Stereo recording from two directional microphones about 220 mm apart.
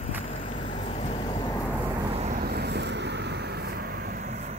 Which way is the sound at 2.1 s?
30° right (ahead or behind).